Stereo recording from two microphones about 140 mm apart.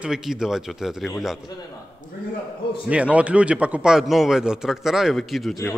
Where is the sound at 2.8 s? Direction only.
10° right (ahead or behind).